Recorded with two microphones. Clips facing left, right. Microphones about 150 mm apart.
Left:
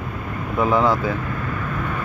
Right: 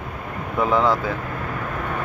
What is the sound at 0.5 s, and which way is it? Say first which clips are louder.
Speech: left 1 dB; 5° left (ahead or behind).